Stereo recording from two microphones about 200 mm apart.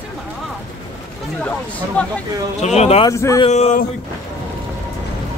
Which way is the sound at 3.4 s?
35° left (ahead or behind).